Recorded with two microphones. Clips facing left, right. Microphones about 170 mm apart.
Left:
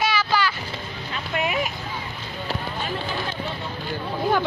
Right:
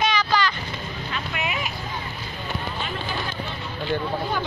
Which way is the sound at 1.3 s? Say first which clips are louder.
Left 7 dB; 45° left (ahead or behind).